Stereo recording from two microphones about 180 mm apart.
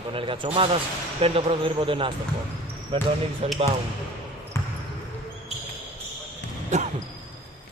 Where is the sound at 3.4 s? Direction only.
35° right (ahead or behind).